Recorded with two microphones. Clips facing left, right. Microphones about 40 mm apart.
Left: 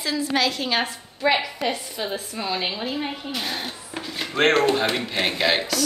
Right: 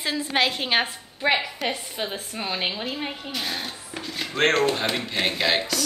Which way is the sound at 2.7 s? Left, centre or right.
Centre.